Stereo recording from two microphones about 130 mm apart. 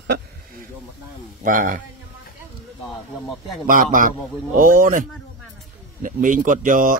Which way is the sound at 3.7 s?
90° right.